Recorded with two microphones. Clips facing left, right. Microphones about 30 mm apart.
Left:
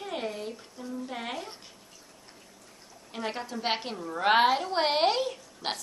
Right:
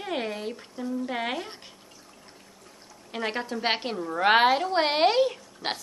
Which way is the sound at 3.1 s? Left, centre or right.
Right.